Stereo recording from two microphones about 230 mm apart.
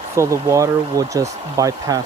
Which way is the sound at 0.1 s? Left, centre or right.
Centre.